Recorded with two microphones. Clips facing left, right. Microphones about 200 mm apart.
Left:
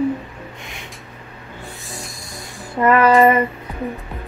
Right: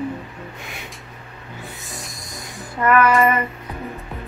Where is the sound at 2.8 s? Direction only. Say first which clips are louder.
Left 2 dB; 30° left (ahead or behind).